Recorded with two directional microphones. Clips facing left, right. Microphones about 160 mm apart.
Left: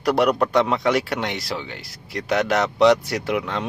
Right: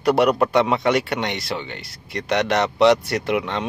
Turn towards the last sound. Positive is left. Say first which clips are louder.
# right 2 dB
turn(degrees=0)  # may be behind; listen again after turning